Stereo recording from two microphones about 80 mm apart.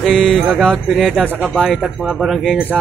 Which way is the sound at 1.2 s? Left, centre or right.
Centre.